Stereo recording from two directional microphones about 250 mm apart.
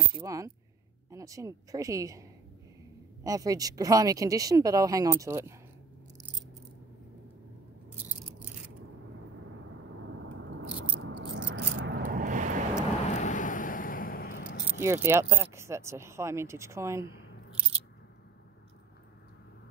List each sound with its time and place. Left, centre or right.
0.1 s speech: centre
3.3 s speech: centre
9.4 s a sound: right
12.0 s vehicle: right
13.0 s vehicle: left
14.8 s speech: centre